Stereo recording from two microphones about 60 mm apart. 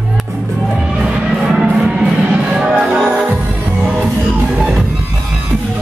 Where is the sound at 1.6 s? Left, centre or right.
Centre.